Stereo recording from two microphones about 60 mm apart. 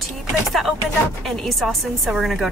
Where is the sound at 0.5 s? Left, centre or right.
Centre.